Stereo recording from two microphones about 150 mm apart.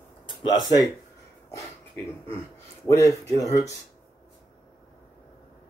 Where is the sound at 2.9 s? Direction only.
20° left (ahead or behind).